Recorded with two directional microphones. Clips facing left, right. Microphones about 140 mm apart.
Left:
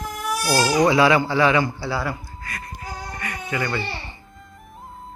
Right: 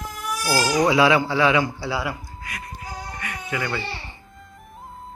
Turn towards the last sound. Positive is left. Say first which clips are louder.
# left 2 dB
turn(degrees=0)  # may be behind; listen again after turning